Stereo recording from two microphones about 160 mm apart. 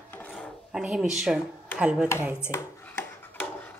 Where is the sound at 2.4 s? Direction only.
15° left (ahead or behind).